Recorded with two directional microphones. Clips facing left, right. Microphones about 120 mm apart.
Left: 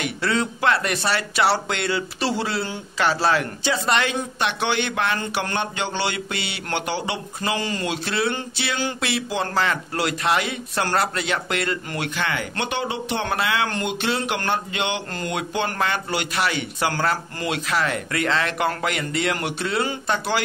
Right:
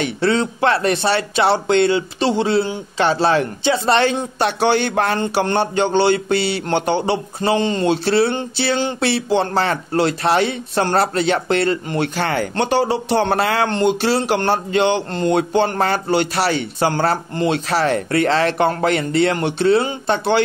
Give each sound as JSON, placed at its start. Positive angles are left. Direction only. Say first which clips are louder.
{"t": 0.0, "sound": "speech", "louder": "right 6 dB", "side_deg": -25}